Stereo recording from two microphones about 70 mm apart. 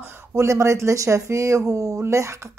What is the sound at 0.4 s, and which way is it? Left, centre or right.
Speech, right.